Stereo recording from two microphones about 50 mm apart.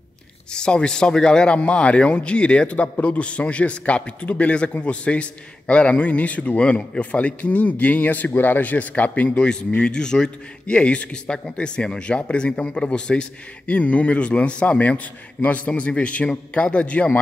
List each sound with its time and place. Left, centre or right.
0.5 s a man's voice: centre
9.8 s a man's voice: centre